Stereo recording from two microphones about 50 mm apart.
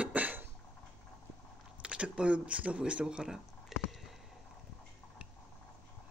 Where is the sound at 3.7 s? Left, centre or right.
Centre.